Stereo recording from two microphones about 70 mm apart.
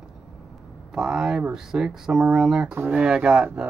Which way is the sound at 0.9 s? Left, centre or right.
Centre.